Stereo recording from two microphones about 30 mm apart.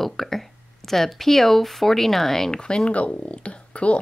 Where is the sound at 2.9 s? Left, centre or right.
Left.